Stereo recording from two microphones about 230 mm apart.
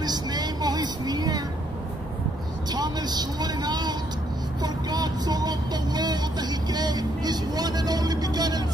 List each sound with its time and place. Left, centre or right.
0.0 s vehicle: centre
2.7 s vehicle: centre